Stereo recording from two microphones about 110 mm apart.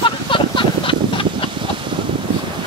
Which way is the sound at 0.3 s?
50° left (ahead or behind).